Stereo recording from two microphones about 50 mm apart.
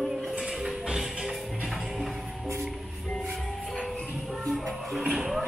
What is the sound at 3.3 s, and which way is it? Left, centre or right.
Music, centre.